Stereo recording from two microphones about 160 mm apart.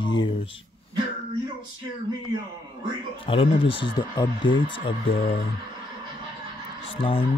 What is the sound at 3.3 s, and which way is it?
Speech, 35° left (ahead or behind).